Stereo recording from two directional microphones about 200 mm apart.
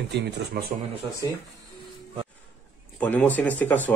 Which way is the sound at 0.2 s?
50° right (ahead or behind).